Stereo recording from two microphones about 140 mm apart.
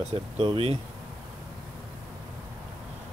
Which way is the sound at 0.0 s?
45° right (ahead or behind).